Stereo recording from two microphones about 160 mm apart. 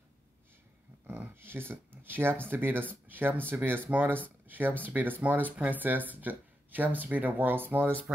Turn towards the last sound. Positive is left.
turn(degrees=-15)  # may be behind; listen again after turning